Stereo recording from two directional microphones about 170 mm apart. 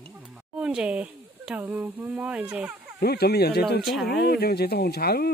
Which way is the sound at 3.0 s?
70° left (ahead or behind).